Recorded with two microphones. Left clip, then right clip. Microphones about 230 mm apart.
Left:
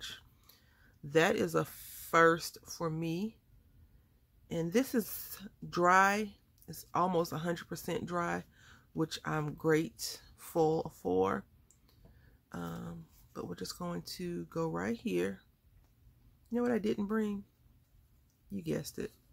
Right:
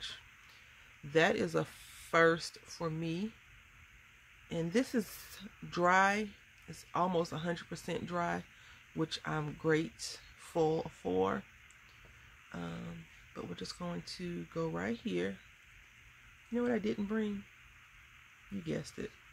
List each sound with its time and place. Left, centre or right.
1.1 s speech: centre
4.5 s speech: centre
12.4 s speech: centre
16.5 s speech: centre
18.6 s speech: centre